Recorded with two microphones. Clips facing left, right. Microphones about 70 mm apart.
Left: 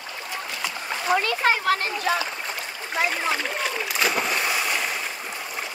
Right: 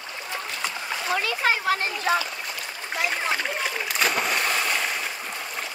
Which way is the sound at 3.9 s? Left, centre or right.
Centre.